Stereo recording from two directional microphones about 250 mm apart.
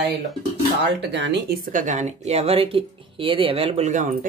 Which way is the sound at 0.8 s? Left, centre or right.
Right.